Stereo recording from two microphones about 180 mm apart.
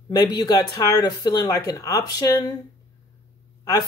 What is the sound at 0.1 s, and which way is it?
Speech, 20° left (ahead or behind).